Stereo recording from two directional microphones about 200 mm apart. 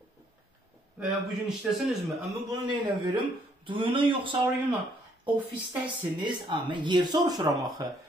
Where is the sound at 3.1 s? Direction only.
25° right (ahead or behind).